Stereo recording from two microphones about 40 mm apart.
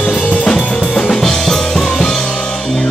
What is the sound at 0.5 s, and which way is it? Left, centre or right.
Drum kit, centre.